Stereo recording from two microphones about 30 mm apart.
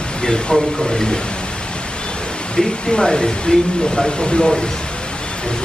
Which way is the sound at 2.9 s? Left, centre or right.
Left.